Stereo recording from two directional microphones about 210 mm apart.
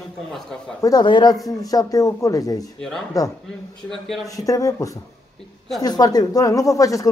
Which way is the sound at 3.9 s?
Centre (ahead or behind).